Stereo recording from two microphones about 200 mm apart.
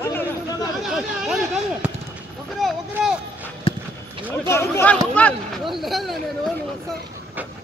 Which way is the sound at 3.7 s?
30° left (ahead or behind).